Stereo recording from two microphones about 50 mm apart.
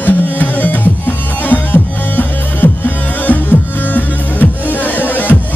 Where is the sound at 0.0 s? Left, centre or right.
Left.